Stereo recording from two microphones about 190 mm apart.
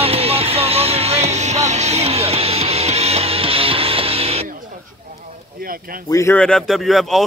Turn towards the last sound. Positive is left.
turn(degrees=0)  # may be behind; listen again after turning